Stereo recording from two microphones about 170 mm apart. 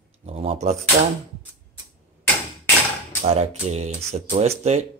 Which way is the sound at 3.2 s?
35° right (ahead or behind).